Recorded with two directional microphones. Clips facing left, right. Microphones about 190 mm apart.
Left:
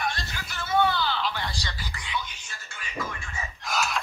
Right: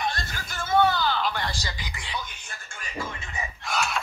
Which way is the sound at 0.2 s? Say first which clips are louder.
Right 2 dB; 45° right (ahead or behind).